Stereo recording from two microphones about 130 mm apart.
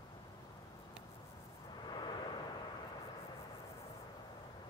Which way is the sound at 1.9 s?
35° left (ahead or behind).